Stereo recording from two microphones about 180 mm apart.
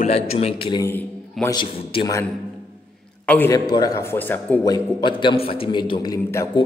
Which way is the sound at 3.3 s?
10° left (ahead or behind).